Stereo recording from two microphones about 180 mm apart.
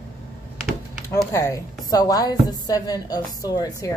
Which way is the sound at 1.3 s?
15° left (ahead or behind).